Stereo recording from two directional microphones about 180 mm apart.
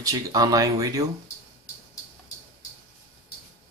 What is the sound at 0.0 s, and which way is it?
Speech, 20° right (ahead or behind).